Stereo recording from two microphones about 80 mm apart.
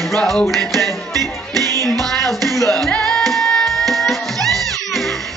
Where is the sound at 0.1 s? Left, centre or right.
Centre.